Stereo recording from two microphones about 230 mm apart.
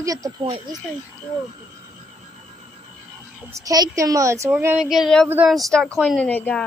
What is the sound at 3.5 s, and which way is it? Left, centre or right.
A woman's voice, centre.